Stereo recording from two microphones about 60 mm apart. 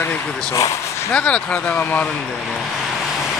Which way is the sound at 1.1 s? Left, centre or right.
Left.